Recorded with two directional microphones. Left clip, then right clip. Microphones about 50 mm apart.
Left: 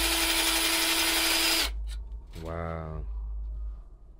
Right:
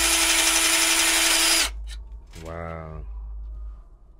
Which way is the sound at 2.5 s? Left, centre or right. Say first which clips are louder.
Right 1 dB; left.